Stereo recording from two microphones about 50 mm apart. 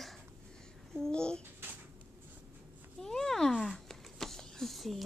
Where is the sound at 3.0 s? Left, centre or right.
Centre.